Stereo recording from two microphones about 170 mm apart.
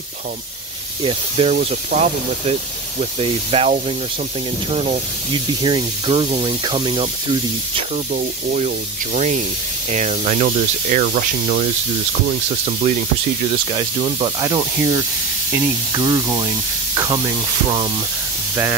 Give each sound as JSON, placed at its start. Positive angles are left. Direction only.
{"t": 1.0, "sound": "speech", "side_deg": -35}
{"t": 8.1, "sound": "speech", "side_deg": -50}
{"t": 12.3, "sound": "speech", "side_deg": -45}
{"t": 13.7, "sound": "speech", "side_deg": -30}